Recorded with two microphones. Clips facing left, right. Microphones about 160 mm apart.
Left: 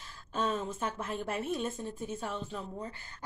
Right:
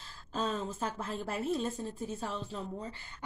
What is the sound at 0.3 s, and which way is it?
Speech, 35° right (ahead or behind).